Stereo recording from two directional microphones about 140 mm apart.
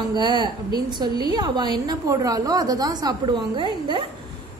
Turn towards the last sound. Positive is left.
turn(degrees=-35)  # may be behind; listen again after turning